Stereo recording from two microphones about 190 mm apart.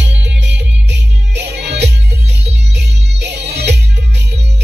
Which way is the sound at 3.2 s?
65° right (ahead or behind).